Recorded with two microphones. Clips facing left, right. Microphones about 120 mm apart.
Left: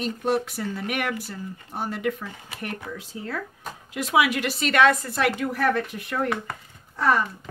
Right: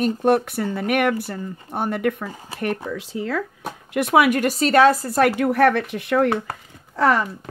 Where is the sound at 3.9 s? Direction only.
55° right (ahead or behind); by 5.3 s 40° right (ahead or behind).